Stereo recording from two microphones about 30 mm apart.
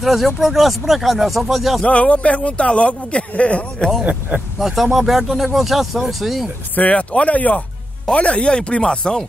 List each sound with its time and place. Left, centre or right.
0.0 s speech: centre
1.9 s speech: left
4.6 s speech: centre
6.7 s speech: left
8.1 s speech: left
8.8 s speech: left